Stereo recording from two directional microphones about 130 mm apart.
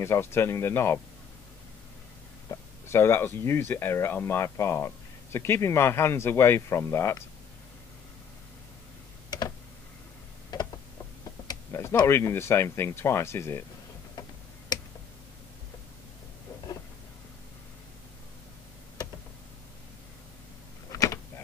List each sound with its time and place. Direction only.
0.0 s speech: 20° left (ahead or behind)
2.5 s speech: 20° left (ahead or behind)
10.5 s tick-tock: 30° left (ahead or behind)
11.4 s speech: 20° left (ahead or behind)
14.7 s tick: 30° left (ahead or behind)
20.9 s a sound: 25° left (ahead or behind)